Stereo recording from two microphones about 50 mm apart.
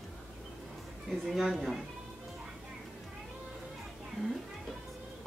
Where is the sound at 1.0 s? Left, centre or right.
Centre.